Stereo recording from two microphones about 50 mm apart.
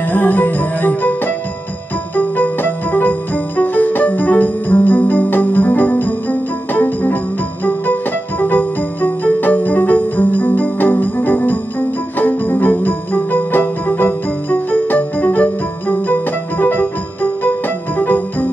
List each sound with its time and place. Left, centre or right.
0.1 s music: left
17.9 s music: left